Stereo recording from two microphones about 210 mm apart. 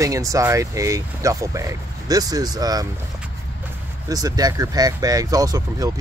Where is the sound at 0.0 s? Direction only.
15° right (ahead or behind).